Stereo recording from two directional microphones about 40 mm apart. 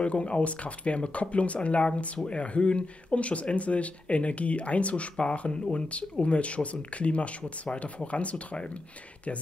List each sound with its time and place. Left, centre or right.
0.0 s speech: left